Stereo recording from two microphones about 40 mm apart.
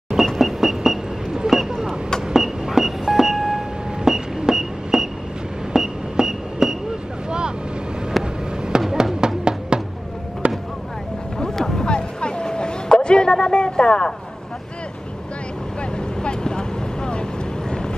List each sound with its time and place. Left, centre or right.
0.4 s a sound: centre
1.6 s vehicle: centre
2.2 s a sound: centre
7.2 s boat: right
8.2 s vehicle: centre
8.9 s music: centre
10.4 s basketball bounce: right
11.3 s boat: centre
11.8 s a sound: left
16.2 s boat: left